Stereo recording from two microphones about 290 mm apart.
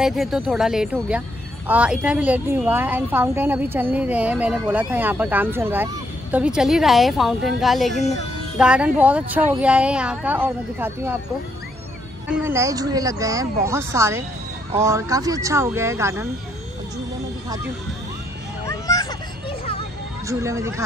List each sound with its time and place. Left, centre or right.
0.0 s a woman's voice: centre
12.3 s a woman's voice: centre
18.7 s a sound: centre
20.2 s a woman's voice: centre